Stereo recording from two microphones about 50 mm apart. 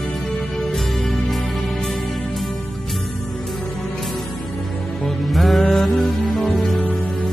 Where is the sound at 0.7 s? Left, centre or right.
Centre.